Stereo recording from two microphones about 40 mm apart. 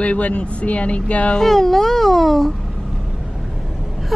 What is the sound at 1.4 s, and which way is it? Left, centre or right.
Speech, centre.